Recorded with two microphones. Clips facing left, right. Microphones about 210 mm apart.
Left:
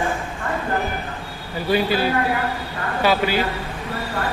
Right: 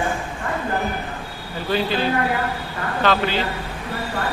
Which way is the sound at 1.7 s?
10° left (ahead or behind).